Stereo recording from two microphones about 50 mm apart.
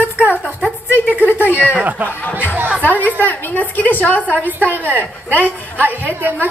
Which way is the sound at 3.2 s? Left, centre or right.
Left.